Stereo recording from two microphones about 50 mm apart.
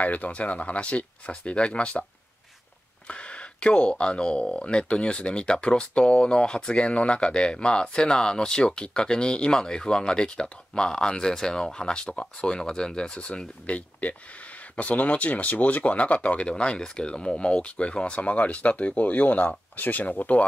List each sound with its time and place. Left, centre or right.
0.0 s speech: left
3.1 s a sound: left
3.9 s speech: centre